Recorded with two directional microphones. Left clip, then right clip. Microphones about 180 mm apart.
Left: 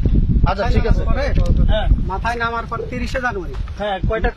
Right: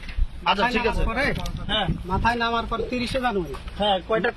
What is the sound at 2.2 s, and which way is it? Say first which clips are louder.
Speech: left 1 dB; 25° left (ahead or behind).